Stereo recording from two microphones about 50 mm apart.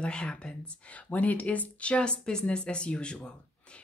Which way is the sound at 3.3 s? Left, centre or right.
Left.